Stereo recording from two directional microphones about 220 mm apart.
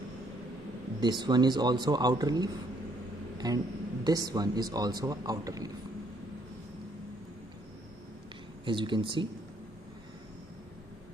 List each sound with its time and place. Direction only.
1.0 s a man's voice: 20° right (ahead or behind)
8.6 s a man's voice: 20° right (ahead or behind)